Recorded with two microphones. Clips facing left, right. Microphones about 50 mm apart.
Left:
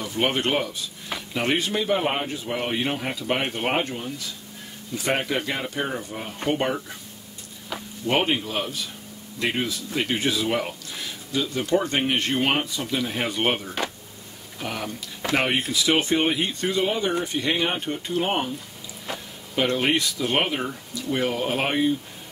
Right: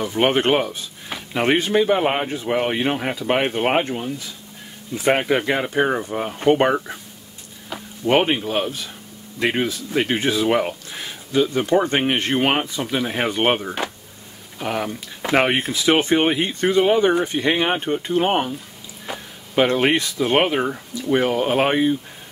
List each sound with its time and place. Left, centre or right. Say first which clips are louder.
0.0 s speech: right 6 dB; right
7.7 s a sound: right 1 dB; centre
8.2 s speech: right 4 dB; centre
19.1 s speech: right 2 dB; centre
19.5 s speech: right 5 dB; right
20.7 s speech: right 7 dB; right